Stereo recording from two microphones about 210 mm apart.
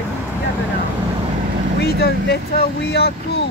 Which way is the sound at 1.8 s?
50° left (ahead or behind).